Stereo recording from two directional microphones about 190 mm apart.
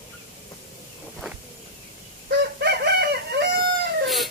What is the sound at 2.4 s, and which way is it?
Chicken, 60° right (ahead or behind).